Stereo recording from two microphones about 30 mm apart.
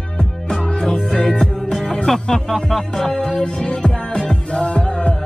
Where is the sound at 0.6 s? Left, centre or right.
Left.